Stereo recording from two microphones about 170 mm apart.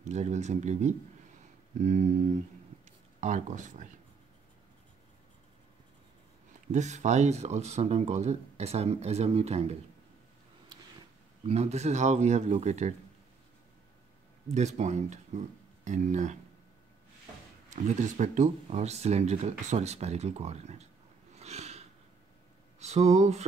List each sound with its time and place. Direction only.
0.0 s speech: 40° right (ahead or behind)
6.7 s speech: 45° right (ahead or behind)
11.4 s speech: 40° right (ahead or behind)
14.5 s speech: 45° right (ahead or behind)
17.6 s speech: 45° right (ahead or behind)
21.4 s a sound: 40° right (ahead or behind)
22.8 s speech: 40° right (ahead or behind)